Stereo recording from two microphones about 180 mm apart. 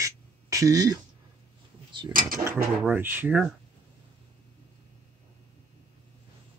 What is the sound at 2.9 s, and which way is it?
Speech, 10° right (ahead or behind).